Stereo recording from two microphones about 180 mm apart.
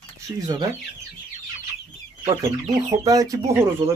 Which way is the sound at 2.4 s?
20° right (ahead or behind).